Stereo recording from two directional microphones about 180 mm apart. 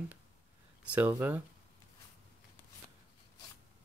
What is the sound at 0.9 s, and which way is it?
Speech, 10° right (ahead or behind).